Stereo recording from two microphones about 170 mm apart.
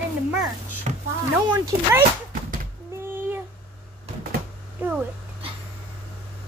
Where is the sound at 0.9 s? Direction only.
40° right (ahead or behind).